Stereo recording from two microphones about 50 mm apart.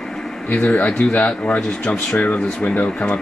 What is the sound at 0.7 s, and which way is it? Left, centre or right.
Speech, left.